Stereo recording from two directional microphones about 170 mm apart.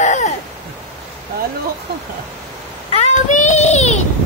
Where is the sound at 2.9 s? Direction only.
45° left (ahead or behind).